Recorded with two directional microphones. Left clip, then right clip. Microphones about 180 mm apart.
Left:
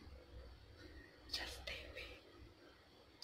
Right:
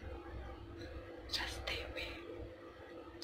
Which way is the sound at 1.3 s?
20° left (ahead or behind).